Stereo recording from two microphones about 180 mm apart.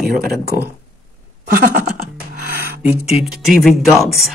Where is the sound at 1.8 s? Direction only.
50° right (ahead or behind).